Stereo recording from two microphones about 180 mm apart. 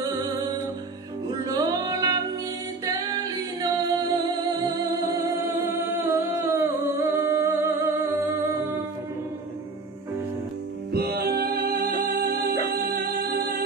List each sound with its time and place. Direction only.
1.4 s music: 20° right (ahead or behind)
3.7 s music: 20° right (ahead or behind)
10.9 s music: 60° right (ahead or behind)